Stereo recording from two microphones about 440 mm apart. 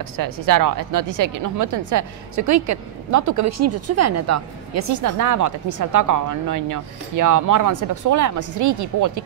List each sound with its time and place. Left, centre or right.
0.2 s a woman's voice: right